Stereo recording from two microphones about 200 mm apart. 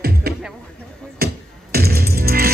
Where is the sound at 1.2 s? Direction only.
50° right (ahead or behind).